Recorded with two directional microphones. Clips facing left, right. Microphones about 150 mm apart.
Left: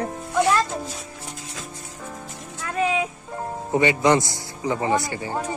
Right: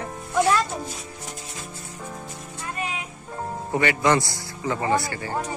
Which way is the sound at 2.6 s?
90° left.